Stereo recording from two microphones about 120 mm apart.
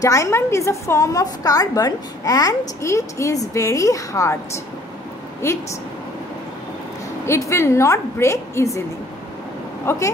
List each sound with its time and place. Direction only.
0.0 s a woman's voice: 25° left (ahead or behind)
5.4 s a woman's voice: 20° left (ahead or behind)
7.2 s a woman's voice: 25° left (ahead or behind)
9.8 s a woman's voice: 25° left (ahead or behind)